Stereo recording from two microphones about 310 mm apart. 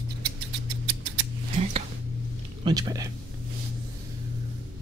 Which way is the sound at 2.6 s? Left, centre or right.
Centre.